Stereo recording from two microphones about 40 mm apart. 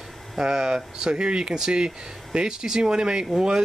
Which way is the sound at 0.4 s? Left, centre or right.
Centre.